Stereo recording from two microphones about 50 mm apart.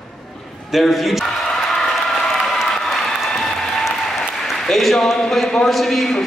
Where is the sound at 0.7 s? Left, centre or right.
Centre.